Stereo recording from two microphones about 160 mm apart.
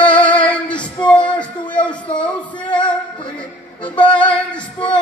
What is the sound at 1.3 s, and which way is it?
Music, 10° left (ahead or behind).